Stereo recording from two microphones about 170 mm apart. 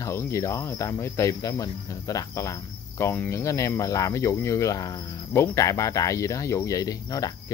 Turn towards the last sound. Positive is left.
turn(degrees=20)  # may be behind; listen again after turning